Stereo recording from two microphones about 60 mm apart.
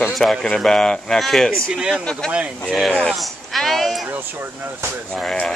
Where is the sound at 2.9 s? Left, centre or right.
Centre.